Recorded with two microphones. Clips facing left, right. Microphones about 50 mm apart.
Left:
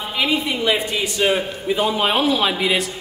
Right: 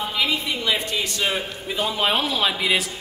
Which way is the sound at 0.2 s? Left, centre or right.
Left.